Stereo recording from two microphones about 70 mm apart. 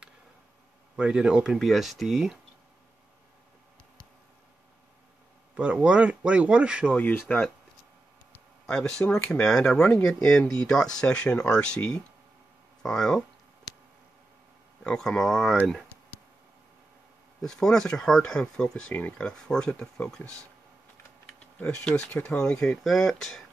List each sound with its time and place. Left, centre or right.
0.9 s speech: centre
5.5 s speech: centre
7.0 s speech: left
8.6 s speech: centre
14.8 s speech: centre
17.4 s speech: centre
21.5 s speech: left
22.8 s speech: centre